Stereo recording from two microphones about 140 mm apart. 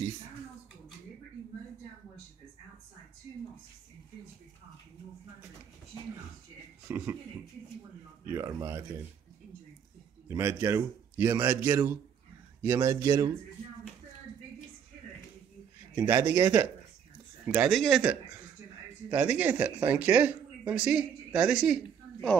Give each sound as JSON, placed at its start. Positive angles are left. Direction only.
{"t": 6.9, "sound": "speech", "side_deg": -15}
{"t": 8.3, "sound": "a sound", "side_deg": -20}
{"t": 10.2, "sound": "speech", "side_deg": -20}
{"t": 15.9, "sound": "speech", "side_deg": -15}
{"t": 17.6, "sound": "speech", "side_deg": 0}
{"t": 19.0, "sound": "speech", "side_deg": -10}